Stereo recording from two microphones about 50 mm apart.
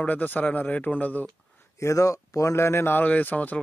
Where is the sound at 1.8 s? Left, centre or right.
Left.